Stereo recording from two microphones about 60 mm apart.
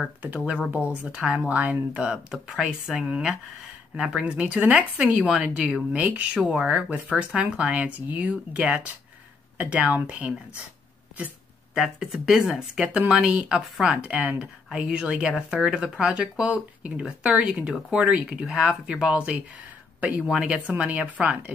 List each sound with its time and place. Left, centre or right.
0.7 s speech: centre
2.5 s a woman's voice: centre
5.9 s a woman's voice: right
11.7 s a woman's voice: centre; by 21.4 s right